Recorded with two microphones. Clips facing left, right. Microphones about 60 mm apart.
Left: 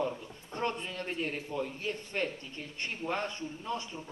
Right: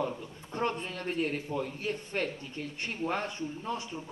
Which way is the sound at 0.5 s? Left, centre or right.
Right.